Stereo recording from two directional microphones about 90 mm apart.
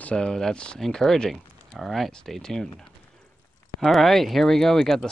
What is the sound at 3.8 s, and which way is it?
Speech, centre (ahead or behind).